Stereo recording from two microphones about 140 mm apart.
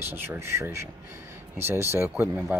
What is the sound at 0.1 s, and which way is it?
Speech, 15° right (ahead or behind).